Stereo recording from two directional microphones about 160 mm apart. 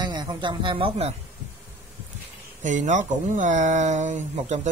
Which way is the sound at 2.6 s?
50° right (ahead or behind).